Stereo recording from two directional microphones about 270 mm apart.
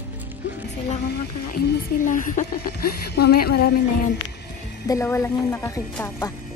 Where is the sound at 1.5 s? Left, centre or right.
Left.